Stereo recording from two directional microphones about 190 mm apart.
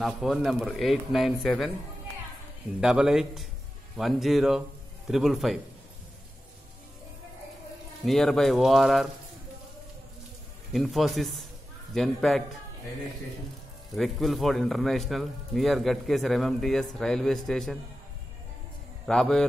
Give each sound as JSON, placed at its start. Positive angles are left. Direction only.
{"t": 0.0, "sound": "speech", "side_deg": 0}
{"t": 2.8, "sound": "speech", "side_deg": -5}
{"t": 8.0, "sound": "speech", "side_deg": 0}
{"t": 10.7, "sound": "speech", "side_deg": 0}
{"t": 13.9, "sound": "speech", "side_deg": 0}
{"t": 19.0, "sound": "speech", "side_deg": 5}